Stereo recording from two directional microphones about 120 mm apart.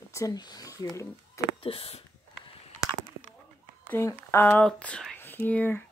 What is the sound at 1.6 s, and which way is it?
Speech, 50° left (ahead or behind).